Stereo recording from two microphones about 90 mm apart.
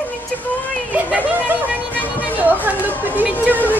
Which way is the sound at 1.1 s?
20° right (ahead or behind).